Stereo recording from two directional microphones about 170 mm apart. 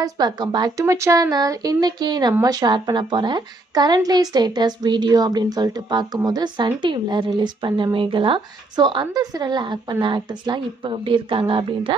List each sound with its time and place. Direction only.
0.0 s a woman's voice: 25° right (ahead or behind)